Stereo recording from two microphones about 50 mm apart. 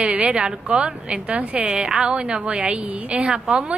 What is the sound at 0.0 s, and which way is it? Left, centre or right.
A woman's voice, right.